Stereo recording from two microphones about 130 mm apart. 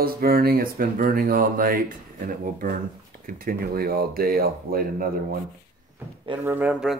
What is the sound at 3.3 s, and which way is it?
Speech, 90° right.